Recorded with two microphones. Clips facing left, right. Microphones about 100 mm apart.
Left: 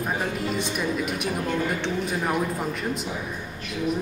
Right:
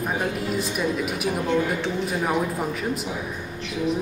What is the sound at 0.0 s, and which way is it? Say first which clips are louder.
A woman's voice: right 1 dB; 5° right (ahead or behind).